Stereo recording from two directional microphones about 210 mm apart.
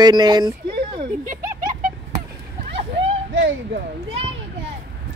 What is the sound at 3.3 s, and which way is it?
Speech, 55° right (ahead or behind).